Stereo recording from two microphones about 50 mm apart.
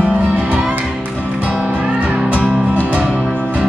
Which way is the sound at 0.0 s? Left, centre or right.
Right.